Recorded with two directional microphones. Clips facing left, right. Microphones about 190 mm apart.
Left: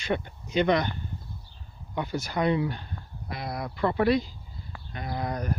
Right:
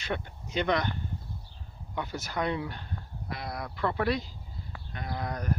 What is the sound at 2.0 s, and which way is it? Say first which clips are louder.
Speech: left 4 dB; 10° left (ahead or behind).